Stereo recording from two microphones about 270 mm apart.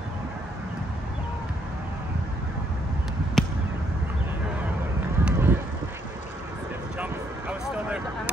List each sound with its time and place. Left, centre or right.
3.4 s a sound: centre
5.2 s run: centre
7.0 s vehicle: centre